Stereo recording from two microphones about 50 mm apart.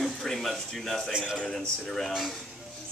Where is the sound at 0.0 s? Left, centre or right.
Centre.